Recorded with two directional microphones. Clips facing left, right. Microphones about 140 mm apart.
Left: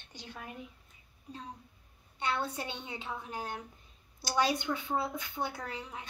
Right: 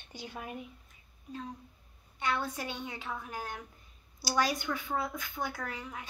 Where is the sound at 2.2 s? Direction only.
30° left (ahead or behind).